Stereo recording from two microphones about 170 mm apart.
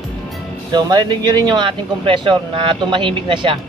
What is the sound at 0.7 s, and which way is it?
Speech, 25° right (ahead or behind).